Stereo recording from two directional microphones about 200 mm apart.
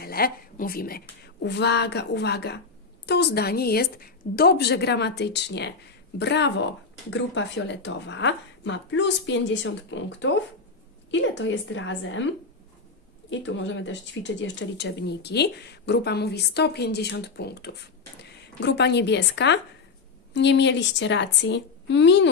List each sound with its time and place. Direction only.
0.0 s a woman's voice: 50° left (ahead or behind); by 12.3 s 70° left (ahead or behind)
13.3 s speech: 70° left (ahead or behind)